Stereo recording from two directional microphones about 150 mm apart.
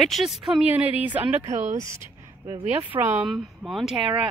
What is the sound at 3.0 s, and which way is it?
Speech, 15° right (ahead or behind).